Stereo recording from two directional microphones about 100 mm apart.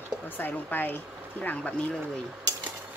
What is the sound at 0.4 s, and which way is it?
Speech, 20° left (ahead or behind).